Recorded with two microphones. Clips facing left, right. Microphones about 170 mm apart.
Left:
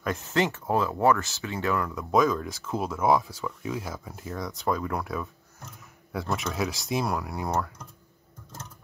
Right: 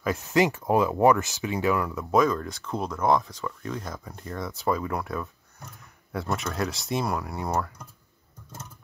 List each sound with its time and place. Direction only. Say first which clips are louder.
0.0 s speech: right 3 dB; 5° right (ahead or behind)